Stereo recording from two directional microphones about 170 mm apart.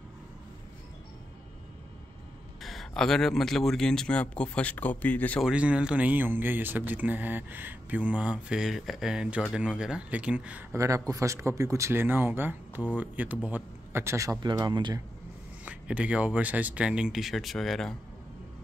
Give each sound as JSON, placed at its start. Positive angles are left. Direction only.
{"t": 2.6, "sound": "speech", "side_deg": 0}
{"t": 5.4, "sound": "speech", "side_deg": -5}
{"t": 10.8, "sound": "speech", "side_deg": -20}
{"t": 15.6, "sound": "speech", "side_deg": -10}